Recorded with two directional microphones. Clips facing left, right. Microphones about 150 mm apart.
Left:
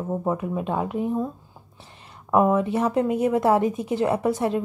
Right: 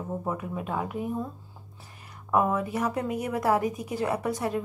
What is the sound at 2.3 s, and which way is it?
A woman's voice, 25° left (ahead or behind).